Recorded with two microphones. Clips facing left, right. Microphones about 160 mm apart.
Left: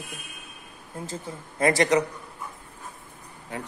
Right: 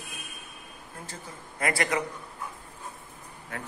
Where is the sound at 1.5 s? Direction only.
25° left (ahead or behind).